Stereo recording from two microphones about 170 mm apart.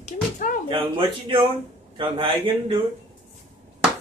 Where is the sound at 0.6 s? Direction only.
30° right (ahead or behind).